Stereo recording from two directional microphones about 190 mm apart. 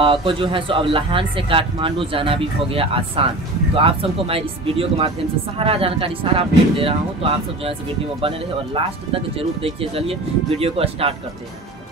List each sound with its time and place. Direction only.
0.0 s speech: 25° right (ahead or behind)